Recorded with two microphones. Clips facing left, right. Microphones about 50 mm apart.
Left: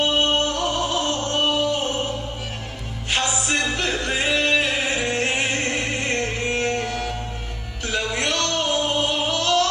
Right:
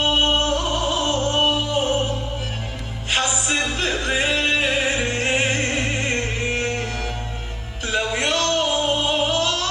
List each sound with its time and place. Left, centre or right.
0.0 s music: right
3.1 s music: centre